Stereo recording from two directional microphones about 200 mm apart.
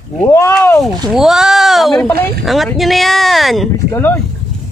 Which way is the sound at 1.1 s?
Centre (ahead or behind).